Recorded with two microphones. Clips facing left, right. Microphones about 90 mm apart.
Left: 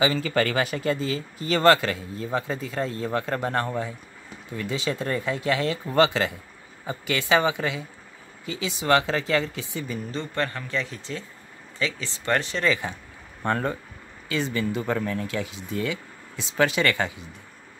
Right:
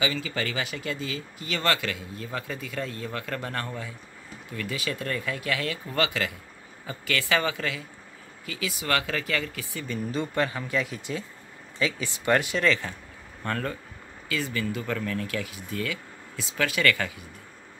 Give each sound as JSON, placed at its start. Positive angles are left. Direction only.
{"t": 0.0, "sound": "speech", "side_deg": 40}
{"t": 0.3, "sound": "speech", "side_deg": 50}
{"t": 10.1, "sound": "speech", "side_deg": -10}
{"t": 12.6, "sound": "speech", "side_deg": 10}
{"t": 13.4, "sound": "speech", "side_deg": 25}